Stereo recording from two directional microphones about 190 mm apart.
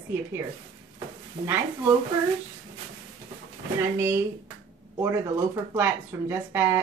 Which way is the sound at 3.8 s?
15° right (ahead or behind).